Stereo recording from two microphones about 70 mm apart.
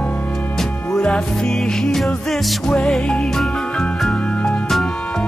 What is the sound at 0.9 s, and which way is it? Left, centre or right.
Music, centre.